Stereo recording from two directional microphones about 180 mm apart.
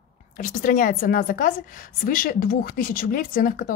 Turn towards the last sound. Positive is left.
turn(degrees=50)  # may be behind; listen again after turning